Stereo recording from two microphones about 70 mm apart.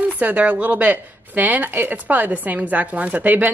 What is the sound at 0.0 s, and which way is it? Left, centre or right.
A woman's voice, right.